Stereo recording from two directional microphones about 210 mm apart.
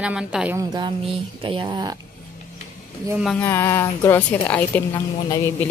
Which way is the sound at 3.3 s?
10° left (ahead or behind).